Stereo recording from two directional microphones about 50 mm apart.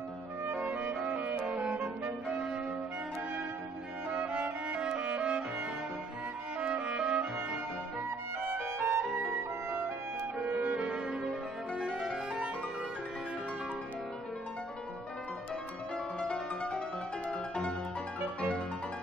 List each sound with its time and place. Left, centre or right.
0.6 s music: right
4.1 s music: right
6.6 s music: right
8.5 s music: right
10.4 s music: right
11.8 s music: centre
16.2 s music: centre